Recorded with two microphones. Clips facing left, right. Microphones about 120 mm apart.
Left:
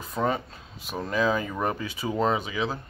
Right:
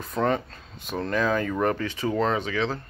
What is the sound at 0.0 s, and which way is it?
Speech, 5° left (ahead or behind).